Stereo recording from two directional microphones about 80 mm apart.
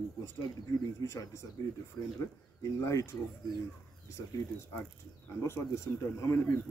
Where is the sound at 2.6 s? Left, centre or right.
Left.